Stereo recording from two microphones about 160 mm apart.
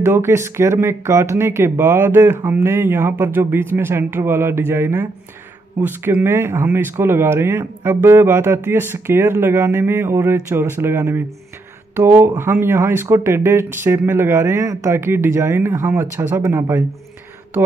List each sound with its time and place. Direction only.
0.0 s speech: 15° right (ahead or behind)